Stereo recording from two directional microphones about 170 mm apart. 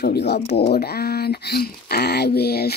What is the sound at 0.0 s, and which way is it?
Speech, 75° left (ahead or behind).